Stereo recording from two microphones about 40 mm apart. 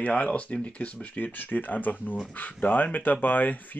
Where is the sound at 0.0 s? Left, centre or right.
Left.